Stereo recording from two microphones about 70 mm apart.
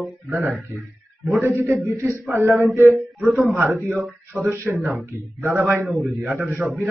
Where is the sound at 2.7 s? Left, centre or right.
Right.